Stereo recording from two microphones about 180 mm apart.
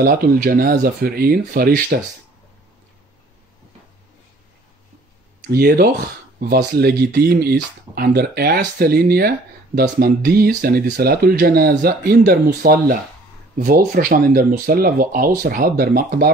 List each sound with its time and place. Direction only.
0.0 s speech: 55° right (ahead or behind)
5.5 s speech: 55° right (ahead or behind)